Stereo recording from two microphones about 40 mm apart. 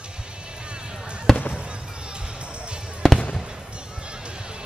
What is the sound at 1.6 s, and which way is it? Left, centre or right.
Music, right.